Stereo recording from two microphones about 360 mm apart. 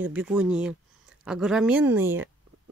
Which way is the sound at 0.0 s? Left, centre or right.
Centre.